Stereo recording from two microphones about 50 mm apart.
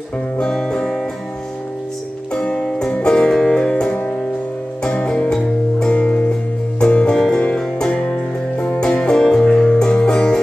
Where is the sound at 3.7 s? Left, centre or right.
Left.